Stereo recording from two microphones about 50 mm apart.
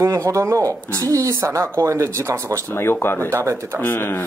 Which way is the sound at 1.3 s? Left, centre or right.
Right.